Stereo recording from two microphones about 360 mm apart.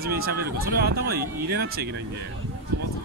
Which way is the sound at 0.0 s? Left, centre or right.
Right.